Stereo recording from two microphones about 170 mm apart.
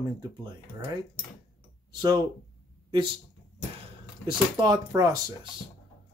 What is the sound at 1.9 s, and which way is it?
Speech, 25° right (ahead or behind).